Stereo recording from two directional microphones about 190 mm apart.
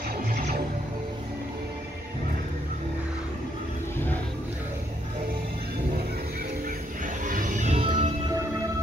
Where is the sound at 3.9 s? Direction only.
10° left (ahead or behind).